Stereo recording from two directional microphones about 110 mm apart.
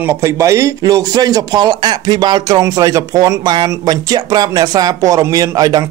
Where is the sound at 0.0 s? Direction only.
25° right (ahead or behind).